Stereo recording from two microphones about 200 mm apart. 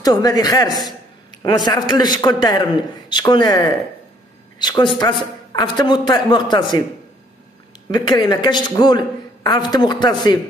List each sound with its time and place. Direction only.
0.0 s a woman's voice: 20° left (ahead or behind)
7.9 s speech: 20° left (ahead or behind)